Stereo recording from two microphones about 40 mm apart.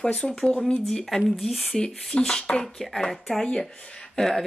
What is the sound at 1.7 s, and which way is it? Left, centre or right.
Speech, centre.